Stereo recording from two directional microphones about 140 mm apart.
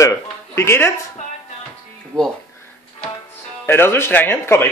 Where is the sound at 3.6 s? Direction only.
15° left (ahead or behind).